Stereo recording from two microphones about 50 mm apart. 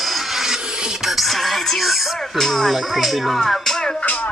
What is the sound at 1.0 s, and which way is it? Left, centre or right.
Speech, centre.